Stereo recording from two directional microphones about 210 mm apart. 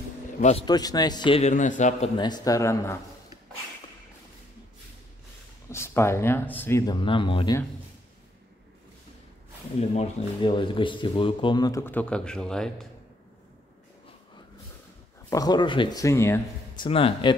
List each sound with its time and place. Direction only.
0.4 s a man's voice: 30° left (ahead or behind)
0.7 s speech: 20° left (ahead or behind); by 2.0 s 35° left (ahead or behind)
2.1 s speech: 20° left (ahead or behind)
5.7 s speech: 10° left (ahead or behind)
9.8 s speech: 25° left (ahead or behind); by 12.8 s 5° left (ahead or behind)
15.2 s speech: 15° left (ahead or behind)
16.8 s speech: 25° left (ahead or behind)